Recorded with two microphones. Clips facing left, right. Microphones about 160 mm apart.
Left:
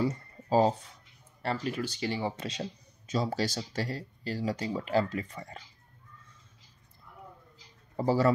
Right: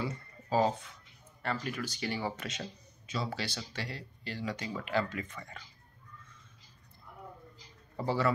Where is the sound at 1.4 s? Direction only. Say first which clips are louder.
Left 4 dB; 30° left (ahead or behind).